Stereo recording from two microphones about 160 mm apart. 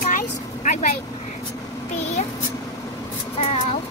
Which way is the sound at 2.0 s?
45° left (ahead or behind).